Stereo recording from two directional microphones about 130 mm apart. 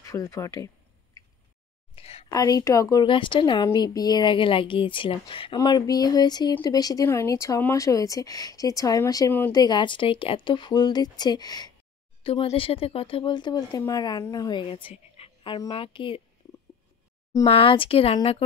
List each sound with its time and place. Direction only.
0.0 s speech: 25° left (ahead or behind)
2.0 s a sound: 50° left (ahead or behind)
2.2 s speech: 30° left (ahead or behind)
3.1 s speech: 40° left (ahead or behind)
12.2 s a woman's voice: 45° left (ahead or behind)
17.5 s speech: 45° left (ahead or behind)